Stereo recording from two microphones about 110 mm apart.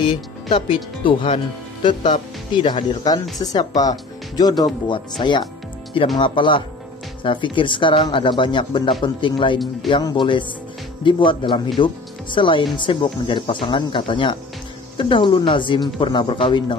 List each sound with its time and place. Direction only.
0.0 s speech: 50° left (ahead or behind)